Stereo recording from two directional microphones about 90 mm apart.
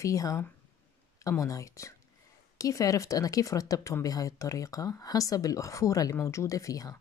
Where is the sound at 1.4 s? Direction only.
35° left (ahead or behind).